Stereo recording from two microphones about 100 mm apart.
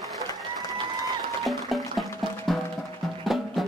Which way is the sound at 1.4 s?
Centre (ahead or behind).